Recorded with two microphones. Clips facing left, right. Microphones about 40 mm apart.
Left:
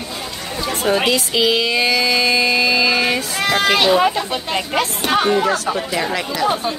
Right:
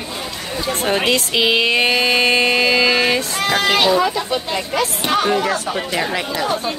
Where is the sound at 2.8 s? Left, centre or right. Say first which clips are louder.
Right 1 dB; right.